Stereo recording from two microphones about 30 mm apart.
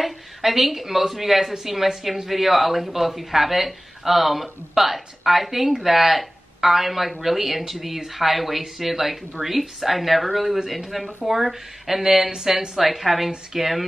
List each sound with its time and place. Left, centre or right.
0.0 s speech: centre